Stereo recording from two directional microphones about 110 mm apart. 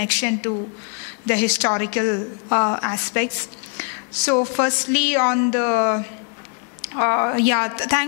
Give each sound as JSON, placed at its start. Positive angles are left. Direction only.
{"t": 0.0, "sound": "a woman's voice", "side_deg": 15}
{"t": 4.3, "sound": "a woman's voice", "side_deg": 15}